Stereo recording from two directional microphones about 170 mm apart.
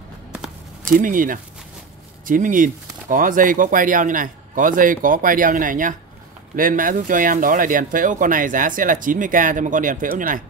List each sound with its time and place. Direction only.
0.9 s speech: 55° right (ahead or behind)